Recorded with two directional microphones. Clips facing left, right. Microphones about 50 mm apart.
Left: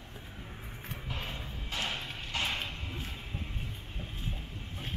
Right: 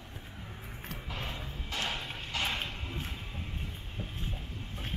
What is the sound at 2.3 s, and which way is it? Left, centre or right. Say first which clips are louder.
Music: even; centre.